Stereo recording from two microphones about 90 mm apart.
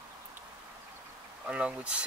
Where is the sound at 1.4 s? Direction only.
10° right (ahead or behind).